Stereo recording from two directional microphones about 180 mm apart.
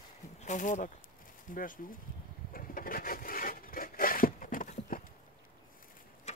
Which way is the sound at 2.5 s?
50° left (ahead or behind).